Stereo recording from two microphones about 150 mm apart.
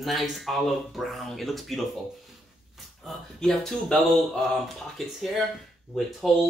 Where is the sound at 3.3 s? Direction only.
5° left (ahead or behind).